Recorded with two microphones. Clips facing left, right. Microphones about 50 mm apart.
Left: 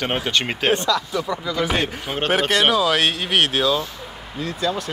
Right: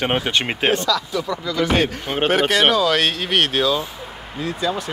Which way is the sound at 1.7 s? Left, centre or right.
Centre.